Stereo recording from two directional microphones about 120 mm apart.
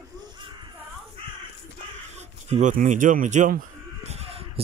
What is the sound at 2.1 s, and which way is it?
Speech, 80° right.